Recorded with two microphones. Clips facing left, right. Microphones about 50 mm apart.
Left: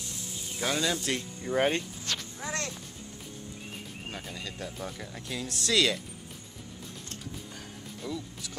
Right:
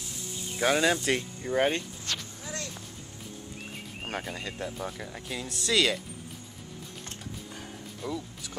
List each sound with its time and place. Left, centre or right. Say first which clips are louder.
0.6 s speech: right 5 dB; centre
1.5 s speech: even; centre
2.4 s music: left 4 dB; left
4.2 s speech: right 4 dB; right
4.7 s speech: right 2 dB; centre
8.0 s speech: right 2 dB; centre